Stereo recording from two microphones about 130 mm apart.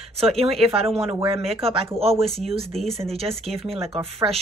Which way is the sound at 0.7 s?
50° right (ahead or behind).